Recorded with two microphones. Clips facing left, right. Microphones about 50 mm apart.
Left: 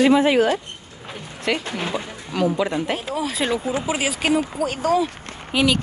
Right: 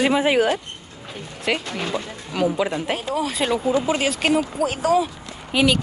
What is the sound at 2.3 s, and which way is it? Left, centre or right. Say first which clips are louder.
Speech: left 1 dB; centre.